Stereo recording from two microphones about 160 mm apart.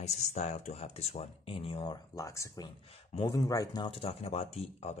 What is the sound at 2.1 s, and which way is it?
Speech, 20° left (ahead or behind).